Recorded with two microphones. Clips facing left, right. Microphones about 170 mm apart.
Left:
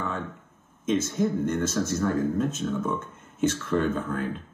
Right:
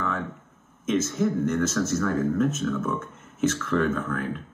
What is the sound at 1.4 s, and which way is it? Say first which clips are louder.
A man's voice: right 2 dB; 30° left (ahead or behind).